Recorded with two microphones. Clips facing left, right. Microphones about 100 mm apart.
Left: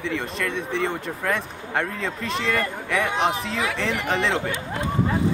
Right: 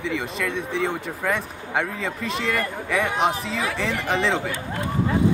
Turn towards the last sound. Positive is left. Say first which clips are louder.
# right 1 dB
turn(degrees=0)  # may be behind; listen again after turning